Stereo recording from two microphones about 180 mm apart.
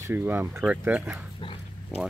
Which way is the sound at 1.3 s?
30° left (ahead or behind).